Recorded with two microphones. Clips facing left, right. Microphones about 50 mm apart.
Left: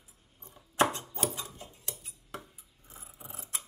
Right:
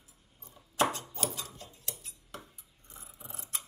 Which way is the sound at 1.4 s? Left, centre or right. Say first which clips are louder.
Left 1 dB; centre.